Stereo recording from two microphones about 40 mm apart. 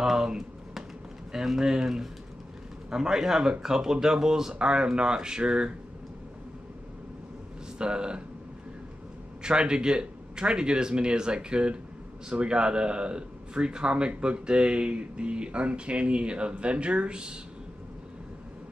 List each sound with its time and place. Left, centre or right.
0.0 s a sound: centre
1.3 s speech: centre
7.8 s speech: right
9.4 s speech: right